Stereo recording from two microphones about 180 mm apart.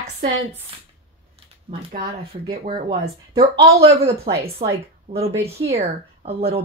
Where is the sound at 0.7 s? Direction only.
30° right (ahead or behind).